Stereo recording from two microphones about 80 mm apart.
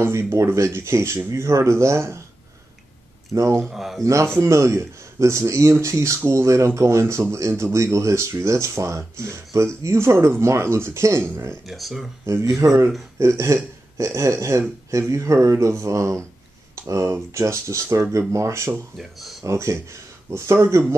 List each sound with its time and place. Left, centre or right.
0.0 s speech: right
3.3 s speech: right
3.7 s speech: centre
4.0 s speech: right
11.6 s speech: centre
12.5 s speech: right